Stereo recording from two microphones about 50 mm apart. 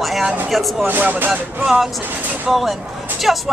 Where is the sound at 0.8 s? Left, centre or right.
Right.